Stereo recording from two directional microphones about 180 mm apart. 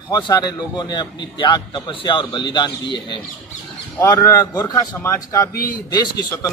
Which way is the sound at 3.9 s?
15° left (ahead or behind).